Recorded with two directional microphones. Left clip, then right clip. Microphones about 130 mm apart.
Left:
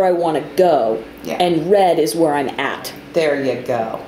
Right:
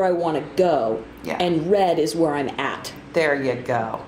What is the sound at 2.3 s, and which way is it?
Speech, 20° left (ahead or behind).